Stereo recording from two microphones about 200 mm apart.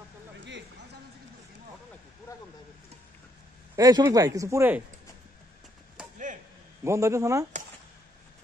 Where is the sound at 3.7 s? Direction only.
20° right (ahead or behind).